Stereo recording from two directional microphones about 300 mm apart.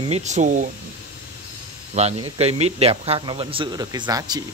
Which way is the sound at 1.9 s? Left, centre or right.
Right.